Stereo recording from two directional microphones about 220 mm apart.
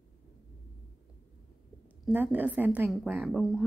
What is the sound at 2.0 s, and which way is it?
A woman's voice, 5° right (ahead or behind).